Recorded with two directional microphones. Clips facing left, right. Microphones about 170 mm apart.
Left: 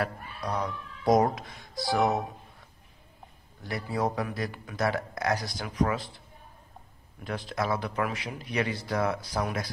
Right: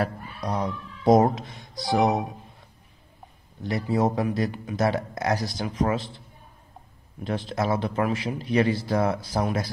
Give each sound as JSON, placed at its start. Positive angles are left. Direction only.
{"t": 0.0, "sound": "a man's voice", "side_deg": -20}
{"t": 3.6, "sound": "a man's voice", "side_deg": -20}
{"t": 7.2, "sound": "a man's voice", "side_deg": -25}